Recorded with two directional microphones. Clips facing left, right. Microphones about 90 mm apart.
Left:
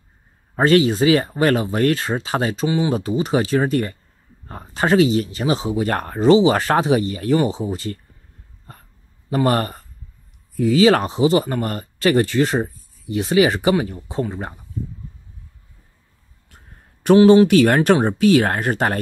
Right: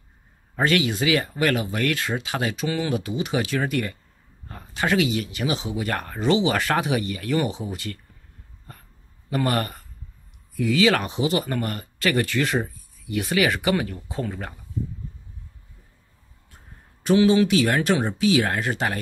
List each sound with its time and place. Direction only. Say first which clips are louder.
0.6 s speech: left 7 dB; 35° left (ahead or behind)
9.3 s speech: left 5 dB; 35° left (ahead or behind)
17.0 s speech: left 7 dB; 50° left (ahead or behind)